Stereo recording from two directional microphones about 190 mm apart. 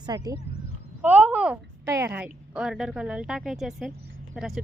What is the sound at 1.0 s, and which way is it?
A woman's voice, 10° right (ahead or behind).